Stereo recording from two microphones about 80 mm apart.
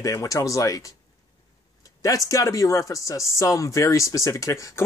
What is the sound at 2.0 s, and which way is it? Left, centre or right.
A man's voice, left.